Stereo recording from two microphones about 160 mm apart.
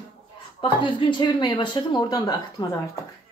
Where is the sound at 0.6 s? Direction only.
30° left (ahead or behind).